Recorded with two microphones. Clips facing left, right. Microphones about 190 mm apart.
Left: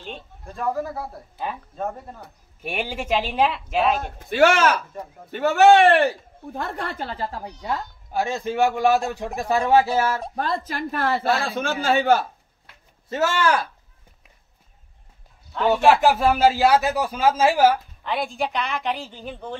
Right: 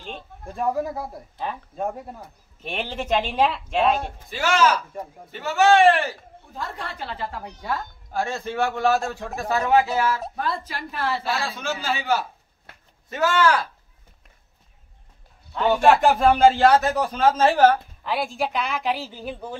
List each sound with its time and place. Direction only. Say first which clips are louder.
0.5 s speech: right 1 dB; 15° right (ahead or behind)
2.6 s a woman's voice: left 1 dB; 10° left (ahead or behind)
4.3 s a woman's voice: left 4 dB; 60° left (ahead or behind); by 7.5 s 35° left (ahead or behind)
8.1 s speech: left 2 dB; 15° left (ahead or behind)
9.9 s a woman's voice: left 1 dB; 45° left (ahead or behind)
13.1 s speech: right 1 dB; 25° left (ahead or behind)
15.5 s speech: even; 5° left (ahead or behind)
18.0 s a woman's voice: even; centre (ahead or behind)